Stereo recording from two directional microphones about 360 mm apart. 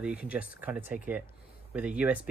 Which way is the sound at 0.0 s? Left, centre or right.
Centre.